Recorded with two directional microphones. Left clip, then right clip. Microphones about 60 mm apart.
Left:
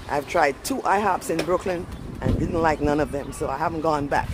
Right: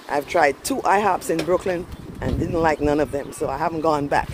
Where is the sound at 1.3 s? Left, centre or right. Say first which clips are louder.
Right 2 dB; right.